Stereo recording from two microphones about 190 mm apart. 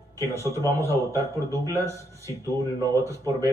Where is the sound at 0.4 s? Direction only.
15° left (ahead or behind).